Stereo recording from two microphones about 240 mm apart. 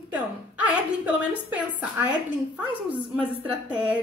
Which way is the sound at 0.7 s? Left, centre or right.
Centre.